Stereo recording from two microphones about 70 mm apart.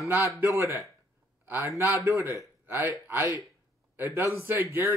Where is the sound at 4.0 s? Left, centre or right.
Right.